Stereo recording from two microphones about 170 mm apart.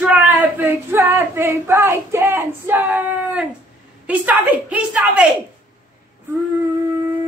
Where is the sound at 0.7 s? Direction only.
15° right (ahead or behind).